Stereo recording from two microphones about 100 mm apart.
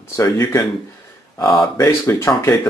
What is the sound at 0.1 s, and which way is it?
Speech, 30° left (ahead or behind).